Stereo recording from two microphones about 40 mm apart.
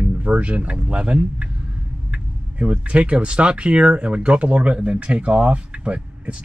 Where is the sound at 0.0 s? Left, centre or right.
Right.